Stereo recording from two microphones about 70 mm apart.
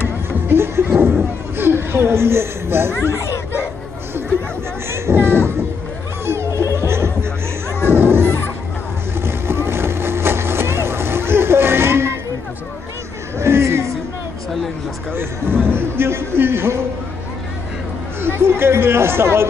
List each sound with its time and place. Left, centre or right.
0.5 s a sound: right
3.0 s children playing: left
4.9 s a sound: right
6.2 s music: right
7.9 s a sound: right
9.2 s vehicle: right
13.4 s chatter: right
15.7 s speech: right
18.2 s speech: right